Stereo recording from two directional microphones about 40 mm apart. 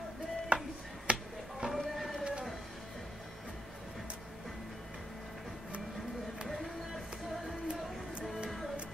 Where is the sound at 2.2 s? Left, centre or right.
Right.